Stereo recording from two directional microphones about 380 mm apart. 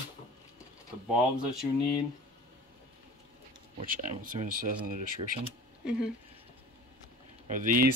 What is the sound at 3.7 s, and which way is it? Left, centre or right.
Speech, right.